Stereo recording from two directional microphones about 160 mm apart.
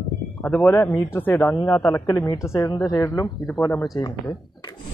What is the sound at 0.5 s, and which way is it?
A woman's voice, 10° left (ahead or behind).